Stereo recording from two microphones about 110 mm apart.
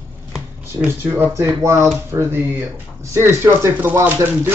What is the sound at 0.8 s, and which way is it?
Speech, 15° right (ahead or behind).